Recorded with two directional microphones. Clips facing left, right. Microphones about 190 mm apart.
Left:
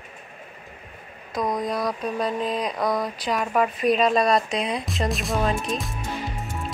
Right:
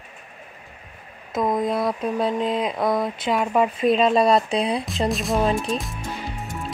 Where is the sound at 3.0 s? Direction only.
25° right (ahead or behind).